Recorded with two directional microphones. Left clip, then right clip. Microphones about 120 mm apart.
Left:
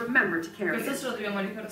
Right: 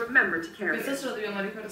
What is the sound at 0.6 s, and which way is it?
Speech, 35° left (ahead or behind).